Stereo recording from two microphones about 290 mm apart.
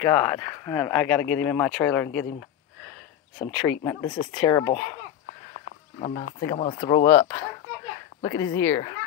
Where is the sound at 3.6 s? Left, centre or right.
Centre.